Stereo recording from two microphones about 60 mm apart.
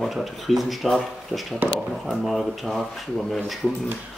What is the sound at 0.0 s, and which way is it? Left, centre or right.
Speech, centre.